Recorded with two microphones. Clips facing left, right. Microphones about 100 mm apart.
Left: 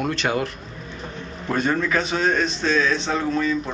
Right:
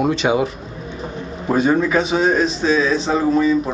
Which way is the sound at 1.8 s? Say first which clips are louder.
Right 5 dB; 5° right (ahead or behind).